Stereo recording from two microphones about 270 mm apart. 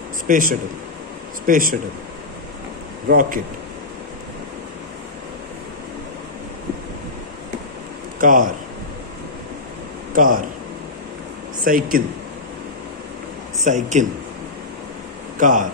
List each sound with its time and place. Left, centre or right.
0.3 s speech: right
3.1 s speech: right
8.2 s speech: right
10.1 s speech: right
11.6 s speech: right
13.7 s speech: right
15.3 s speech: right